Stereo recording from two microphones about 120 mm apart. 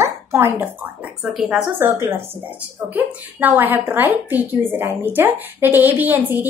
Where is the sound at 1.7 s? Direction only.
20° right (ahead or behind).